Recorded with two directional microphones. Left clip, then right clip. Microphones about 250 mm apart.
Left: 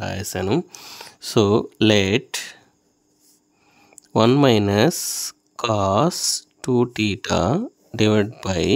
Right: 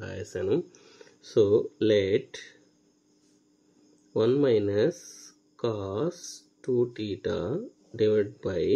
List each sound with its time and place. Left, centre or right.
0.0 s speech: left
4.1 s speech: left